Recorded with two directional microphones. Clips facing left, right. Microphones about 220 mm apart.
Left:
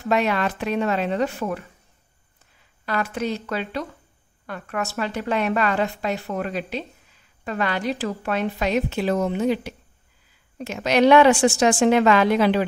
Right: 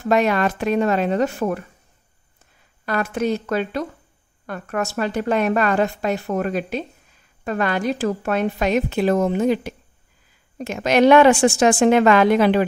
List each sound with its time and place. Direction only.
0.1 s a woman's voice: 45° right (ahead or behind)
2.8 s a woman's voice: 50° right (ahead or behind)